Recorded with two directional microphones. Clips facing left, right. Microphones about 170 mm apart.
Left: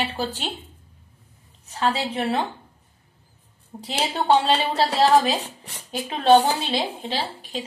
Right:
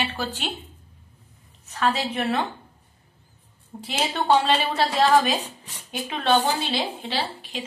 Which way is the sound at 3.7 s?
20° left (ahead or behind).